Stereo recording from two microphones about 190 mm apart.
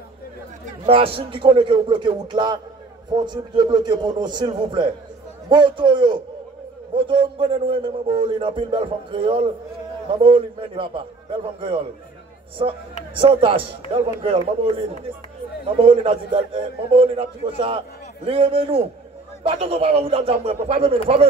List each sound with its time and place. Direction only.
0.8 s a man's voice: 30° right (ahead or behind)
12.5 s a man's voice: 25° right (ahead or behind)